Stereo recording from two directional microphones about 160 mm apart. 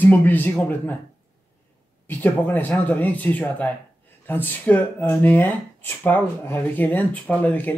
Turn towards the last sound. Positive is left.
turn(degrees=10)  # may be behind; listen again after turning